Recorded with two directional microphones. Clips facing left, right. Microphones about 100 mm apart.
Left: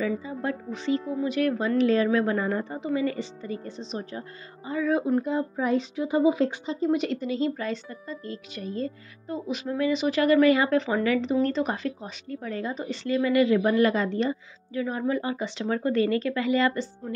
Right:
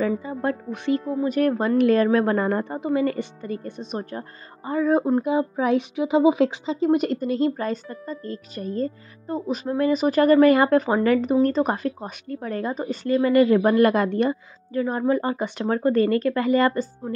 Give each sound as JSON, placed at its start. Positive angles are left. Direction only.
{"t": 0.0, "sound": "speech", "side_deg": -50}
{"t": 5.2, "sound": "speech", "side_deg": -75}
{"t": 6.9, "sound": "speech", "side_deg": -45}